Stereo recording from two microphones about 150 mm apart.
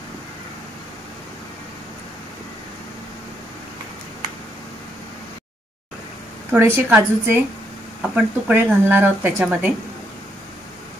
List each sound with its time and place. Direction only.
6.5 s speech: 15° right (ahead or behind)